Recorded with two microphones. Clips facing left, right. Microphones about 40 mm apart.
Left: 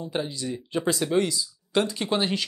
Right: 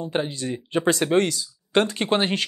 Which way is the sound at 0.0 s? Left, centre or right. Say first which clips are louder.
Right 4 dB; right.